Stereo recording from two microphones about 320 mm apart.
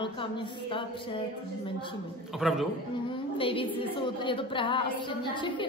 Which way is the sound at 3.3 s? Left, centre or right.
Centre.